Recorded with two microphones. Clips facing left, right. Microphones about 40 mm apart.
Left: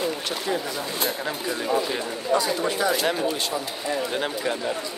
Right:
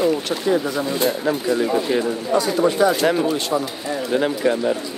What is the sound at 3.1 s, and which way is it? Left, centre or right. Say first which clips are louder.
Speech: right 6 dB; right.